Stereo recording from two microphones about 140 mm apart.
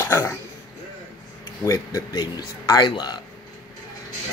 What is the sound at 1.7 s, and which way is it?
Speech, 25° left (ahead or behind).